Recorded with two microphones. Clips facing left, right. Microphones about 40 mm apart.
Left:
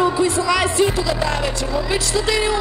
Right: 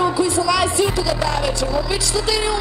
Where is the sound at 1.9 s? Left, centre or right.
Left.